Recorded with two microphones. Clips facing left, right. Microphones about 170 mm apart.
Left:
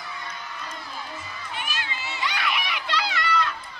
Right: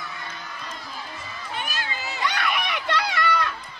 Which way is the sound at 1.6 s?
40° right (ahead or behind).